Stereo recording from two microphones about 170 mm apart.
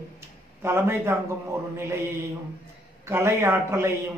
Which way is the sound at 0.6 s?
15° right (ahead or behind).